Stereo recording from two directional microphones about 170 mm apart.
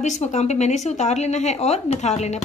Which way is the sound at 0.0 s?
45° left (ahead or behind).